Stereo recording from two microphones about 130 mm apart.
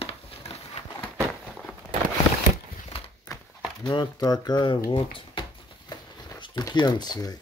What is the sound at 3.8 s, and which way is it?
Speech, 30° left (ahead or behind).